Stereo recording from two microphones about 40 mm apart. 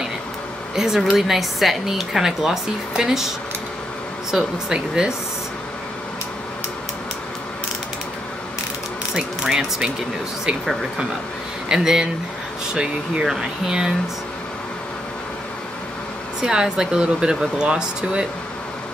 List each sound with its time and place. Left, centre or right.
0.7 s speech: centre
4.7 s speech: right
9.1 s speech: centre
11.7 s speech: centre
12.7 s speech: right
16.3 s speech: centre